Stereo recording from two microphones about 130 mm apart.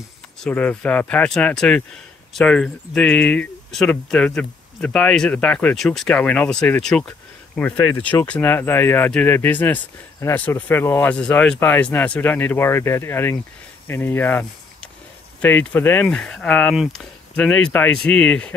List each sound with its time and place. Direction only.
0.4 s speech: 10° left (ahead or behind)
11.1 s speech: 5° left (ahead or behind)